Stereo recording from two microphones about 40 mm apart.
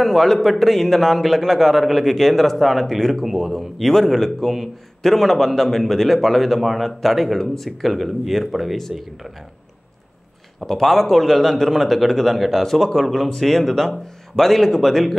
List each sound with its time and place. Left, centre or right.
0.0 s a man's voice: centre
10.6 s a man's voice: centre